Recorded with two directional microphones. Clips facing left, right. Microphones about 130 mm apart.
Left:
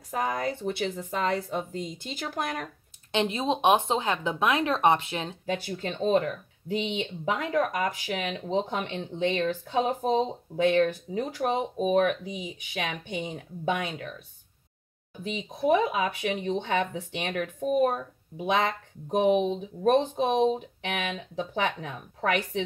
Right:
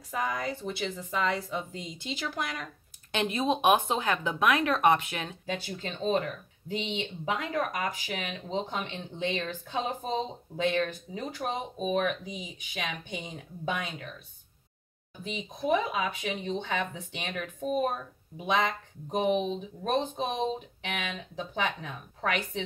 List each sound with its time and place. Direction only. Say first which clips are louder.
0.1 s speech: left 3 dB; 45° left (ahead or behind)
3.1 s speech: left 2 dB; 20° left (ahead or behind)
5.5 s speech: left 5 dB; 55° left (ahead or behind)
7.9 s speech: left 5 dB; 70° left (ahead or behind)
15.6 s speech: left 4 dB; 55° left (ahead or behind)
19.0 s speech: left 4 dB; 65° left (ahead or behind)